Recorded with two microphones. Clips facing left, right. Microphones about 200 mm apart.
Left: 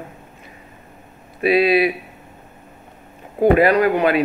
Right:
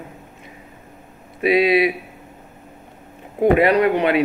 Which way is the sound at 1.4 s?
20° right (ahead or behind).